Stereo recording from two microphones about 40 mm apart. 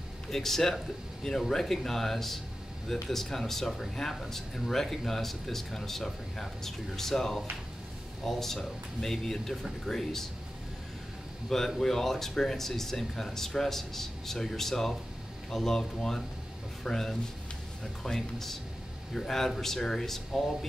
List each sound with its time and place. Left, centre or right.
0.3 s speech: centre
11.4 s speech: centre